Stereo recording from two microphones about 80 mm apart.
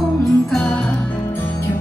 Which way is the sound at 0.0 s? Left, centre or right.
Centre.